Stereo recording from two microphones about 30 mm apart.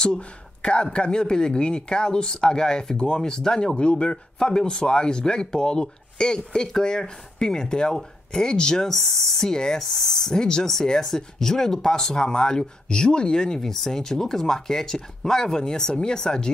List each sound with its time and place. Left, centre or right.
0.6 s speech: left
3.7 s speech: left
8.9 s speech: centre
9.5 s speech: left
9.8 s speech: centre
10.4 s speech: left
13.7 s speech: centre